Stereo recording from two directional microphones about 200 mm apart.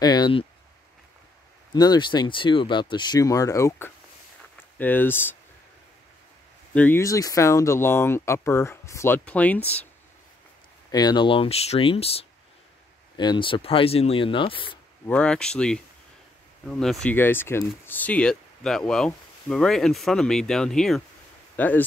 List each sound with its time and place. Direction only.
0.0 s speech: 20° left (ahead or behind)
1.7 s speech: 20° left (ahead or behind)
6.7 s speech: 10° left (ahead or behind)
10.9 s speech: 20° left (ahead or behind)
15.0 s speech: 5° left (ahead or behind)